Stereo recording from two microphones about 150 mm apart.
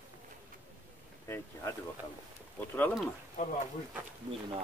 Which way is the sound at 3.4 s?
65° left (ahead or behind).